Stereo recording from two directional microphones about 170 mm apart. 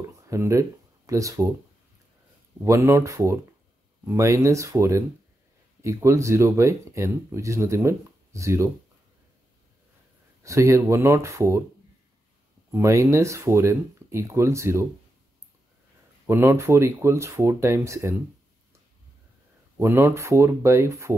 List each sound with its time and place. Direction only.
0.3 s speech: 15° right (ahead or behind)
2.6 s speech: 15° right (ahead or behind)
10.4 s speech: 15° right (ahead or behind)
12.7 s speech: 15° right (ahead or behind)
16.3 s speech: 15° right (ahead or behind)
19.8 s speech: 15° right (ahead or behind)